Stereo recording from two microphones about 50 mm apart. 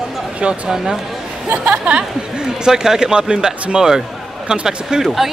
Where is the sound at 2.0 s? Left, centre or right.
Centre.